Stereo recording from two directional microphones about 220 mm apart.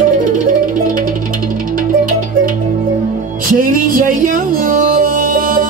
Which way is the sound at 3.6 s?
40° right (ahead or behind).